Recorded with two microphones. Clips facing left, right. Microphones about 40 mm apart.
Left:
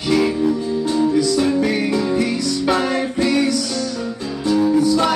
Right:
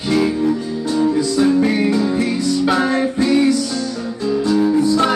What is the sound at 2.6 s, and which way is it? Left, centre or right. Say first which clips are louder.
Music: right 2 dB; centre.